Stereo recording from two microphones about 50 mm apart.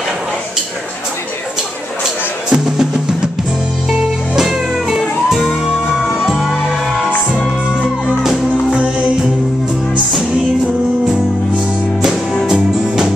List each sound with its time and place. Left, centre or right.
2.5 s music: centre
6.0 s music: centre
8.2 s music: centre
8.7 s music: right
12.3 s music: centre
12.5 s music: centre